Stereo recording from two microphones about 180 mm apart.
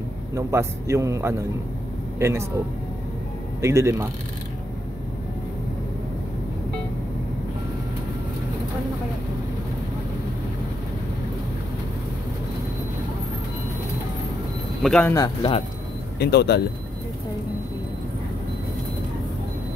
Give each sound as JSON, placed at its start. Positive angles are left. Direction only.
{"t": 0.3, "sound": "a man's voice", "side_deg": -15}
{"t": 3.6, "sound": "a man's voice", "side_deg": -15}
{"t": 14.8, "sound": "speech", "side_deg": 5}
{"t": 16.2, "sound": "speech", "side_deg": 65}